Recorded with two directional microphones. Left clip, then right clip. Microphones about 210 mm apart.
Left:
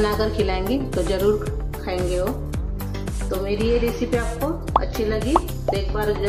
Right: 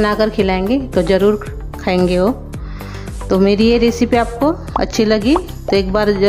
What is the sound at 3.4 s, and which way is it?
A woman's voice, 45° right (ahead or behind).